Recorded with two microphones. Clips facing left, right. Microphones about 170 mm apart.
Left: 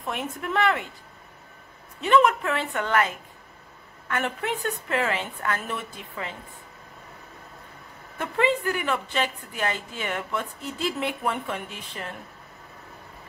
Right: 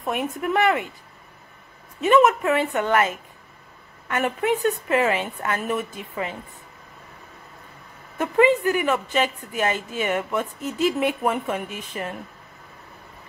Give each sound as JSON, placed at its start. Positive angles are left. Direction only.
{"t": 0.0, "sound": "speech", "side_deg": -20}
{"t": 2.0, "sound": "a woman's voice", "side_deg": -20}
{"t": 4.1, "sound": "a woman's voice", "side_deg": -15}
{"t": 8.2, "sound": "a woman's voice", "side_deg": -15}